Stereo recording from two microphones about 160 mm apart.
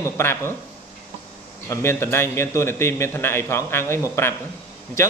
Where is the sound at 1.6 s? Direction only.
15° left (ahead or behind).